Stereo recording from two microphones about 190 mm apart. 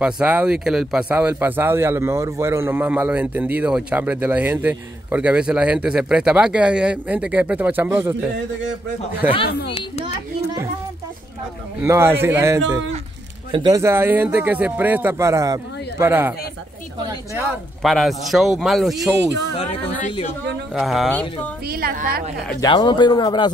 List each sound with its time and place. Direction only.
0.0 s speech: 5° right (ahead or behind)
9.7 s speech: 30° left (ahead or behind)
11.8 s speech: 15° right (ahead or behind)
17.8 s speech: centre (ahead or behind)
19.6 s speech: 35° left (ahead or behind)
20.7 s speech: centre (ahead or behind)
21.6 s a woman's voice: 55° right (ahead or behind)
22.6 s speech: 25° left (ahead or behind)